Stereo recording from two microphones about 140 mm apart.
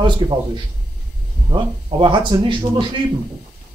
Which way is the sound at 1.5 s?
35° right (ahead or behind).